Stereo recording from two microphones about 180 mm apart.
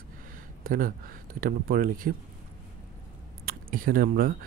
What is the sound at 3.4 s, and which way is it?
Speech, 50° right (ahead or behind).